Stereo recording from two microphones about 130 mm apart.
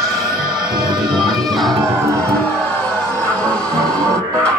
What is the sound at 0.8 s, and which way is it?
Music, 35° right (ahead or behind).